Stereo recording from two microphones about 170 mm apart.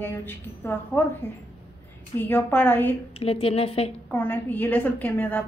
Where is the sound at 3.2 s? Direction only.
35° left (ahead or behind).